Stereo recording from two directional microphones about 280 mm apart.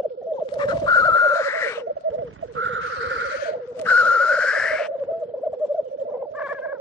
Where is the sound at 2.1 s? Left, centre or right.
Right.